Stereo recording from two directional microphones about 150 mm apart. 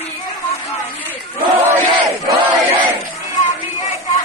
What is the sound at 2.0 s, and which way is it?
Battle cry, 20° right (ahead or behind).